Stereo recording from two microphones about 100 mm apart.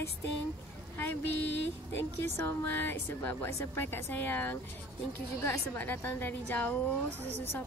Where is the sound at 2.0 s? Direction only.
25° left (ahead or behind).